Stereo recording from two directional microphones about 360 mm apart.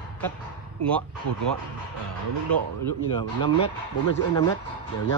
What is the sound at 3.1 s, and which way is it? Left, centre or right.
Speech, centre.